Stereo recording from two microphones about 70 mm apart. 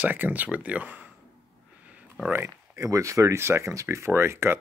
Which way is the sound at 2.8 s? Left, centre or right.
Right.